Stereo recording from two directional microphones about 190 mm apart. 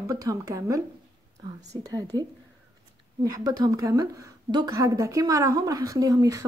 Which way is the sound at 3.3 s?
15° right (ahead or behind).